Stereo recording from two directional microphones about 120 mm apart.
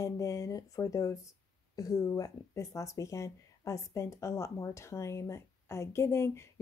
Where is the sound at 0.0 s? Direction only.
30° left (ahead or behind).